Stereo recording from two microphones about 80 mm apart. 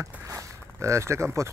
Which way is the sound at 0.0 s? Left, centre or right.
Right.